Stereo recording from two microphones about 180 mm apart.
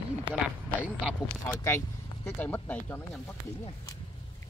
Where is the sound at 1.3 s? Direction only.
10° left (ahead or behind).